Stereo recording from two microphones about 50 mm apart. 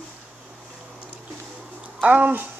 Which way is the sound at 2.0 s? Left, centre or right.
Right.